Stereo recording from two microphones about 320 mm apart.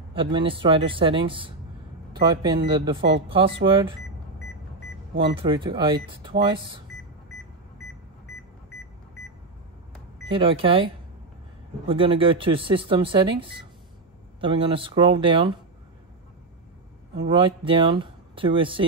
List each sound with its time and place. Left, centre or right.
0.1 s speech: centre
5.3 s speech: centre
10.3 s speech: centre
11.9 s speech: centre
17.3 s speech: centre